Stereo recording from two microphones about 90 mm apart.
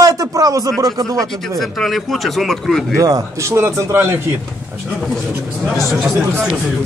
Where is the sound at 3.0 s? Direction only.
40° right (ahead or behind).